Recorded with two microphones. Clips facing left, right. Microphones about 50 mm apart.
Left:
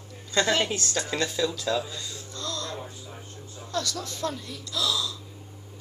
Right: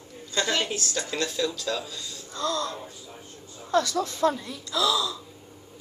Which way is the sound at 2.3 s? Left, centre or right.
Right.